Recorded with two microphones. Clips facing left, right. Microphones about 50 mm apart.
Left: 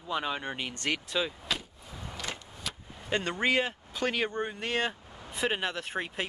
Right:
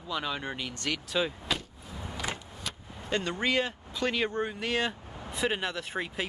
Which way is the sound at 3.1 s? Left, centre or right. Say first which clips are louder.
Left 1 dB; left.